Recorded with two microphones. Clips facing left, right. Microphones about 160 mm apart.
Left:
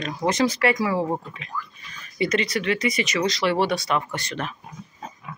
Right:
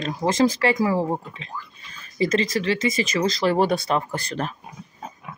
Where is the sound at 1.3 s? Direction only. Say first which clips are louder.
Left 2 dB; 30° right (ahead or behind).